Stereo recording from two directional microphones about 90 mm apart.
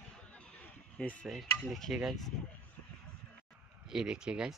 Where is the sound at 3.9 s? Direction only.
5° right (ahead or behind).